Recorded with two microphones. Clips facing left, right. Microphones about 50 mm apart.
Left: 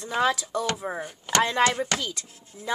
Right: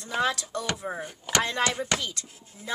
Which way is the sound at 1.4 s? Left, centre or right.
Centre.